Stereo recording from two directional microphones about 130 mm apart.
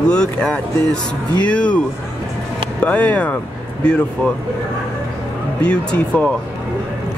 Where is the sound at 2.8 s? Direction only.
10° left (ahead or behind).